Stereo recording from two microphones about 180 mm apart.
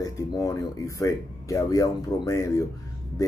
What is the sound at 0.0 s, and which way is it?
Speech, 20° left (ahead or behind).